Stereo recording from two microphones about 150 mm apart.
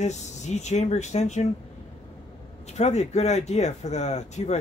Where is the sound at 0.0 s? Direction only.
50° left (ahead or behind).